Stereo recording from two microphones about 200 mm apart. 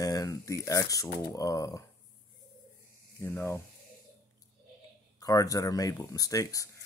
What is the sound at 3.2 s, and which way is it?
Speech, 10° left (ahead or behind).